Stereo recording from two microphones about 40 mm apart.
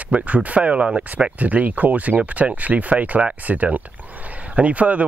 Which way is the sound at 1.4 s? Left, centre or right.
Right.